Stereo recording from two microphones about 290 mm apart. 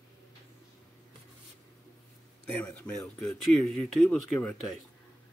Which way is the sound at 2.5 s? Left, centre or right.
Centre.